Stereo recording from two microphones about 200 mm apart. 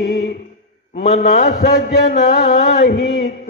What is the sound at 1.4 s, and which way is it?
Music, 45° left (ahead or behind).